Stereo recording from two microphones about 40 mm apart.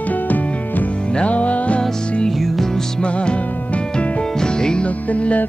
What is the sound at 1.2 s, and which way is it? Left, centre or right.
Music, left.